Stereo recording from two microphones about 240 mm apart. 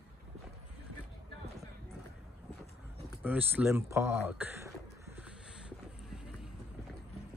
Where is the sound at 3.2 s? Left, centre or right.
Centre.